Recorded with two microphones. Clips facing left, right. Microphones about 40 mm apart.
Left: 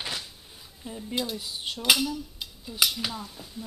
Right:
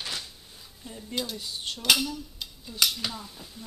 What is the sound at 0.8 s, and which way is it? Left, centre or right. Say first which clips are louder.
Cutlery: left 2 dB; centre.